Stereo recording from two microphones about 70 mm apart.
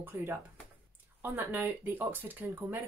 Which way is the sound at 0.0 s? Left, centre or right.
Right.